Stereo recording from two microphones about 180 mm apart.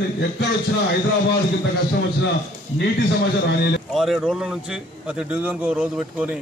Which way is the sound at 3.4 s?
70° left (ahead or behind).